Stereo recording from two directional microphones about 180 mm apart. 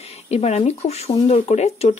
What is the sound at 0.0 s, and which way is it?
Speech, 35° left (ahead or behind).